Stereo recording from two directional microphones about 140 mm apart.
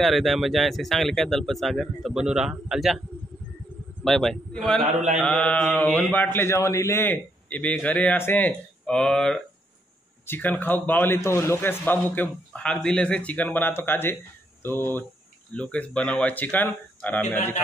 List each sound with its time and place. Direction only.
0.0 s speech: centre (ahead or behind)
4.0 s speech: 5° left (ahead or behind)